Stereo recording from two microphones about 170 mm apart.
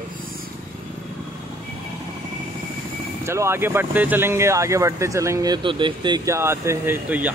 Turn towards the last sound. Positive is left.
turn(degrees=-10)  # may be behind; listen again after turning